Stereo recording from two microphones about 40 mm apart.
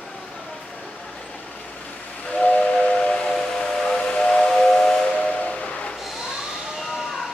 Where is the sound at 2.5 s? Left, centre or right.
Left.